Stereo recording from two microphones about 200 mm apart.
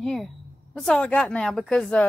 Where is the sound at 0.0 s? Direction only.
Centre (ahead or behind).